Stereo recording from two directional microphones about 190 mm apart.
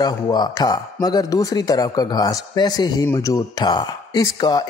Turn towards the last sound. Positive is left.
turn(degrees=20)  # may be behind; listen again after turning